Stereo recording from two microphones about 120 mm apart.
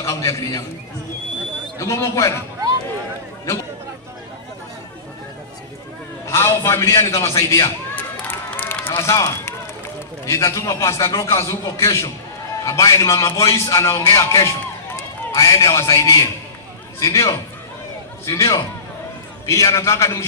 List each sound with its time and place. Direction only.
0.0 s a man's voice: 25° left (ahead or behind)
1.8 s a man's voice: 25° left (ahead or behind)
6.2 s a man's voice: 20° left (ahead or behind)
7.9 s run: 15° left (ahead or behind)
9.0 s a man's voice: 25° left (ahead or behind)